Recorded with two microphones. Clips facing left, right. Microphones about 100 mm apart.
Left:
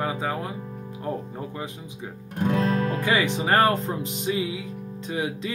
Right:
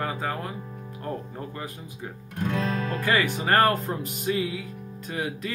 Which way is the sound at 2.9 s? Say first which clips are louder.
Left 1 dB; 15° left (ahead or behind).